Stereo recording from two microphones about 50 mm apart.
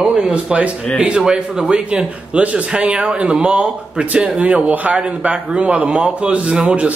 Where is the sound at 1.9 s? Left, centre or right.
Right.